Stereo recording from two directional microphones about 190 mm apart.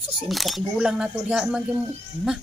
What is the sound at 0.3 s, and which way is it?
Speech, centre (ahead or behind).